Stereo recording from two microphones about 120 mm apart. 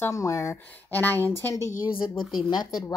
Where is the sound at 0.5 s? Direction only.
15° left (ahead or behind).